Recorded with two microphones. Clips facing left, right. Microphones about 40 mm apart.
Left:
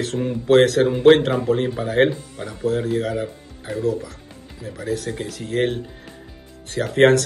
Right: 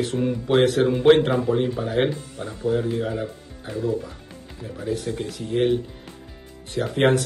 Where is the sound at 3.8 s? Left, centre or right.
Left.